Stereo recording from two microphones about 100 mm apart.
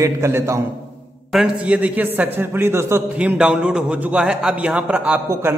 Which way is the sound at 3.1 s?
10° right (ahead or behind).